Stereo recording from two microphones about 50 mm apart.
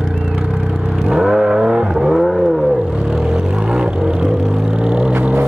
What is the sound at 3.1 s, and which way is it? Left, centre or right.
Vehicle, centre.